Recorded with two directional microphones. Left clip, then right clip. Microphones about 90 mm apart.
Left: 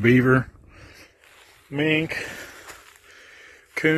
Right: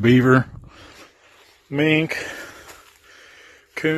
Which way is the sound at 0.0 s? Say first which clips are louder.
Right 2 dB; 35° right (ahead or behind).